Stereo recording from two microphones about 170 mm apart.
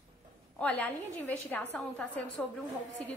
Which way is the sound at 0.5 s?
10° left (ahead or behind).